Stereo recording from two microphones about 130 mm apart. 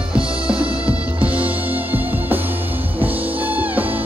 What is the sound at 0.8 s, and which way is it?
Music, 10° right (ahead or behind).